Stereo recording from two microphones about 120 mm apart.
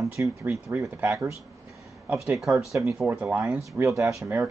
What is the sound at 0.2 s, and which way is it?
Speech, 25° right (ahead or behind).